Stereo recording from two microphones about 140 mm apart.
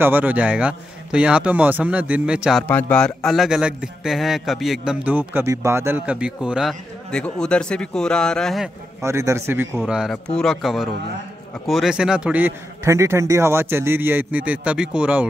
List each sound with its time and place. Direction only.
0.0 s a man's voice: 10° right (ahead or behind)
5.0 s a man's voice: 15° right (ahead or behind); by 8.6 s 5° left (ahead or behind)
9.0 s a man's voice: 20° right (ahead or behind)
9.8 s a man's voice: 5° right (ahead or behind)